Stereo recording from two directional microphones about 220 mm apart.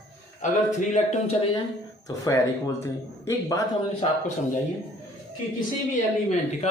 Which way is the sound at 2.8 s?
10° left (ahead or behind).